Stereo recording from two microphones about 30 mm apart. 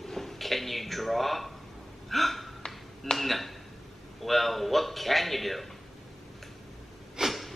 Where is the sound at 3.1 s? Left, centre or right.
Centre.